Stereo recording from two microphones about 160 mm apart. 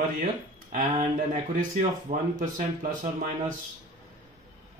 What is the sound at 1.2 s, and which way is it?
Speech, 60° right (ahead or behind).